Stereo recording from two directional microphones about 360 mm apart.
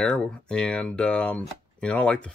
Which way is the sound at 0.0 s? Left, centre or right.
Centre.